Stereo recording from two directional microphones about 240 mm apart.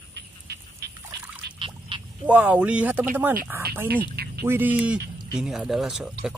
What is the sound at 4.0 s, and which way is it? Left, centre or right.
Speech, right.